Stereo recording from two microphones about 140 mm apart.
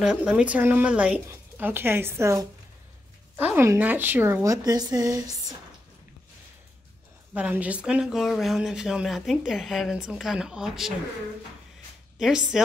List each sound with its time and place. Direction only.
0.0 s speech: 5° right (ahead or behind); by 5.6 s 25° right (ahead or behind)
7.3 s speech: 10° right (ahead or behind)
12.2 s speech: 5° right (ahead or behind)